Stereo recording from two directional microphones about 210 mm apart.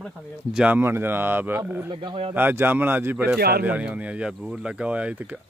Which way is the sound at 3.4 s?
45° right (ahead or behind).